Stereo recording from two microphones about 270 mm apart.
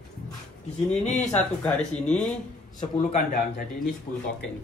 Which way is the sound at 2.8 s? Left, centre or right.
Left.